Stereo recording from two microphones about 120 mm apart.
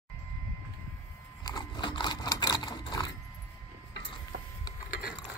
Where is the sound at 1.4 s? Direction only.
35° left (ahead or behind).